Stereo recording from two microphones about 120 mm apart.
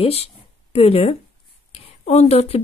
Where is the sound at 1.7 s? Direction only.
65° left (ahead or behind).